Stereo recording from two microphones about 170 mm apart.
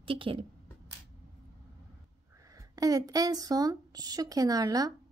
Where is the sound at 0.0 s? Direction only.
30° right (ahead or behind).